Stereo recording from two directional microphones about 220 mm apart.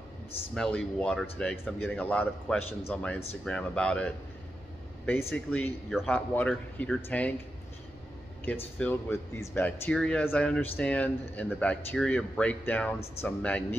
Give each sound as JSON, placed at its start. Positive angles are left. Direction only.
{"t": 0.6, "sound": "a man's voice", "side_deg": 5}
{"t": 8.5, "sound": "a man's voice", "side_deg": 10}